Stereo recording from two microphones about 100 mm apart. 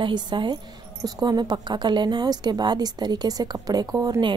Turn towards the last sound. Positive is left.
turn(degrees=-35)  # may be behind; listen again after turning